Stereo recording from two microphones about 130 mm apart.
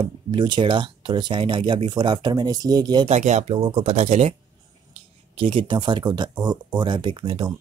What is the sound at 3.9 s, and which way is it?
Speech, 60° right (ahead or behind).